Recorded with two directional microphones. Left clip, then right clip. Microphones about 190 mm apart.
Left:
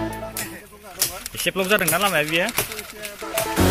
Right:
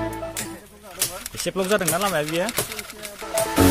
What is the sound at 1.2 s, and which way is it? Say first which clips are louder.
Pigeon: left 3 dB; 5° right (ahead or behind).